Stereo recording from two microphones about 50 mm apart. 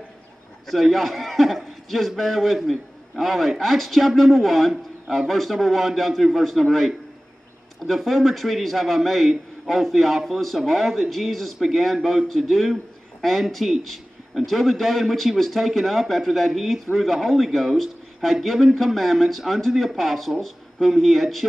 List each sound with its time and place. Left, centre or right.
0.7 s a man's voice: centre